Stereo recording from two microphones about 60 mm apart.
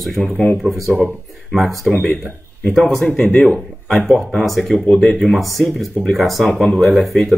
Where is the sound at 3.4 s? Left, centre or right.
Centre.